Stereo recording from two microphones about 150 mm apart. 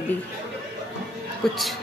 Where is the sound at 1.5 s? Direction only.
Centre (ahead or behind).